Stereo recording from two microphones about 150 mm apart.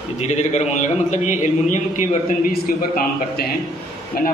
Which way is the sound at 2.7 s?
70° left (ahead or behind).